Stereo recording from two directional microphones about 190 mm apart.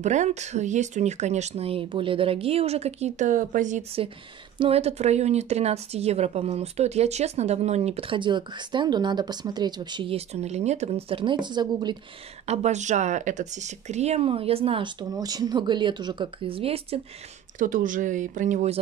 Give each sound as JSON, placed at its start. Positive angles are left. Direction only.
{"t": 0.0, "sound": "speech", "side_deg": -40}
{"t": 12.4, "sound": "speech", "side_deg": -35}
{"t": 17.6, "sound": "speech", "side_deg": -45}